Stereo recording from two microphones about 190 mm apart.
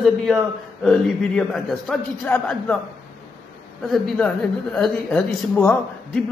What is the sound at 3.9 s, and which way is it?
A woman's voice, centre (ahead or behind).